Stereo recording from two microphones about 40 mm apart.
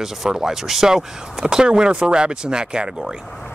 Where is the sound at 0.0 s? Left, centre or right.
Centre.